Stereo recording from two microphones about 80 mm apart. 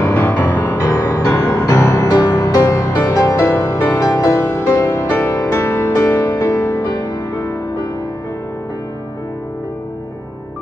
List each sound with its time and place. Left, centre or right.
0.1 s music: left
0.4 s music: left
4.0 s music: left
4.3 s music: left
6.9 s music: left